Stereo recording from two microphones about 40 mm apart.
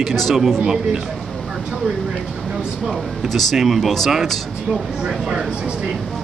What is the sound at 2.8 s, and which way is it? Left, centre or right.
Speech, centre.